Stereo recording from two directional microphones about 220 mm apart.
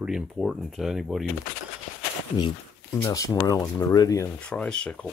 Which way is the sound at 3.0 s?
15° left (ahead or behind).